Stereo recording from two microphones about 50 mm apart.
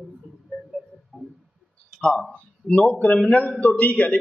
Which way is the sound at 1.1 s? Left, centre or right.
Right.